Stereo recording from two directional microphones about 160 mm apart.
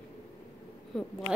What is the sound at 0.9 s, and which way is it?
Speech, centre (ahead or behind).